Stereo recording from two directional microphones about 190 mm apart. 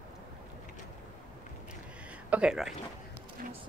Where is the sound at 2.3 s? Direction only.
5° right (ahead or behind).